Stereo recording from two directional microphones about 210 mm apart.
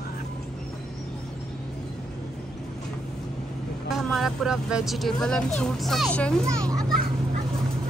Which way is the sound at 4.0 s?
Centre (ahead or behind).